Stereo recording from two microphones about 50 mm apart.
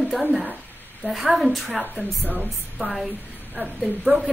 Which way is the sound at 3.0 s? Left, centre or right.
Right.